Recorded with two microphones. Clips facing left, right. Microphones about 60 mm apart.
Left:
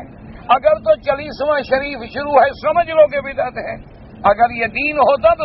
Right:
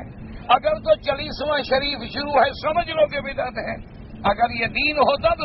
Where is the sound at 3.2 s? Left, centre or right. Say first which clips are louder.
Left 6 dB; left.